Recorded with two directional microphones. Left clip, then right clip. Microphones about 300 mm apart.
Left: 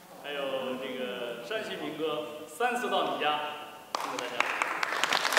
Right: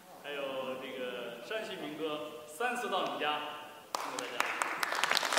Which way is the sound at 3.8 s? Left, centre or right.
Centre.